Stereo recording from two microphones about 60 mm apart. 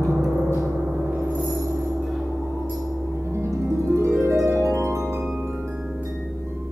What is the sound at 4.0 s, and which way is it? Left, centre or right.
Harp, right.